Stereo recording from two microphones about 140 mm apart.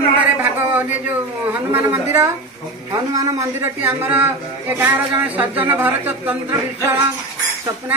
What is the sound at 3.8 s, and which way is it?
Speech, 10° right (ahead or behind).